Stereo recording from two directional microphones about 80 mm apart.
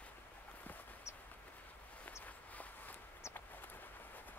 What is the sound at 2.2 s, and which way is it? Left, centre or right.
Walk, centre.